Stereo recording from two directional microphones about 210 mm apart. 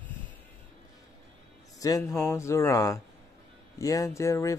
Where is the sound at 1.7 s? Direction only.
15° left (ahead or behind).